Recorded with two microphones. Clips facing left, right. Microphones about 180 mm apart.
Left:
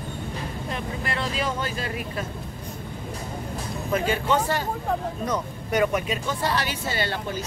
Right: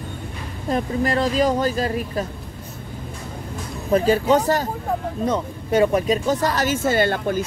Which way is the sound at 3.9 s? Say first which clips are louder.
Right 7 dB; 35° right (ahead or behind).